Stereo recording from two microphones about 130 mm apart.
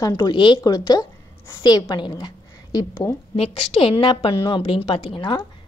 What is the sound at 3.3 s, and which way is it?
A woman's voice, 45° left (ahead or behind).